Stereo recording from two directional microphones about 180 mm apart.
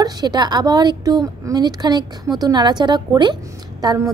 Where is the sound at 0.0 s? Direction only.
20° right (ahead or behind).